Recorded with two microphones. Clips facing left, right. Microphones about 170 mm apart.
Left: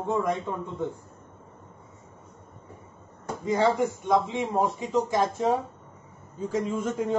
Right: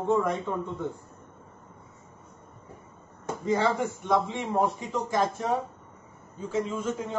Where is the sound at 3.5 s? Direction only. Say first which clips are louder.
Left 2 dB; 15° left (ahead or behind).